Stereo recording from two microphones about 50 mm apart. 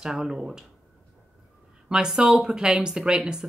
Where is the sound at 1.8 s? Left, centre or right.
Centre.